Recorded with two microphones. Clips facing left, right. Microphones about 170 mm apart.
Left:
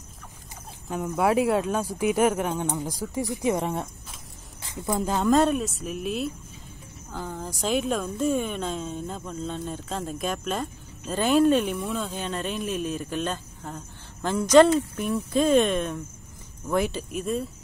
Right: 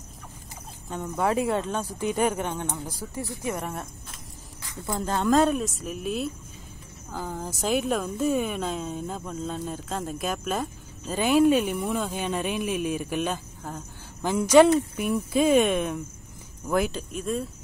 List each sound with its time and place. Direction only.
0.8 s speech: 5° left (ahead or behind)
4.6 s a sound: 20° left (ahead or behind)
4.9 s speech: 5° left (ahead or behind)